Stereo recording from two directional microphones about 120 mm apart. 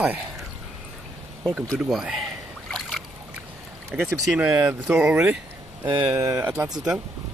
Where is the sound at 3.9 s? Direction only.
15° right (ahead or behind).